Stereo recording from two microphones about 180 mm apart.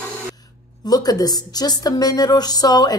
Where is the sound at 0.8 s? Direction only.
20° left (ahead or behind).